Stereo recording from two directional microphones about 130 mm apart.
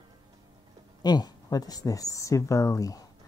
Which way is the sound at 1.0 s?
30° left (ahead or behind).